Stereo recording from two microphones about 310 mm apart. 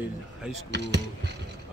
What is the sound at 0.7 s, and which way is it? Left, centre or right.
Speech, right.